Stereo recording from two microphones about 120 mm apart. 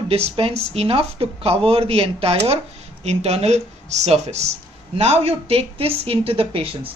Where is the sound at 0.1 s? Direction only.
60° right (ahead or behind).